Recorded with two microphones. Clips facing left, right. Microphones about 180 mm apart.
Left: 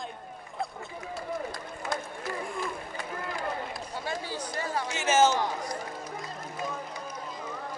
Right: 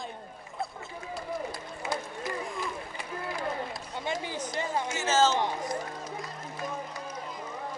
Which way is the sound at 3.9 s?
20° right (ahead or behind).